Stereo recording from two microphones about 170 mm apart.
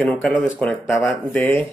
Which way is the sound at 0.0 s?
5° left (ahead or behind).